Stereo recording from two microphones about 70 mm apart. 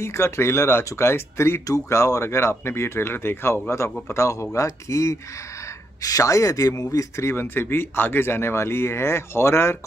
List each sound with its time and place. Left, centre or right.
0.0 s speech: left
4.1 s speech: left
7.2 s speech: left